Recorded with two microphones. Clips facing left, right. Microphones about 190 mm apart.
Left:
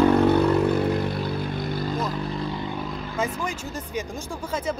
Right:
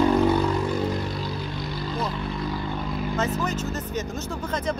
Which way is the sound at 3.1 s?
10° left (ahead or behind).